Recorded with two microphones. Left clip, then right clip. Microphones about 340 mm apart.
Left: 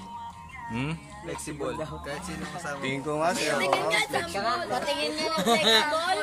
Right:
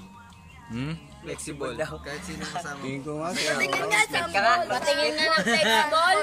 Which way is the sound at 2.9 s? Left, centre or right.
Left.